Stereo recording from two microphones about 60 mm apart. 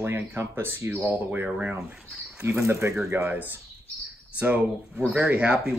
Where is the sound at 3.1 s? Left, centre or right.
Right.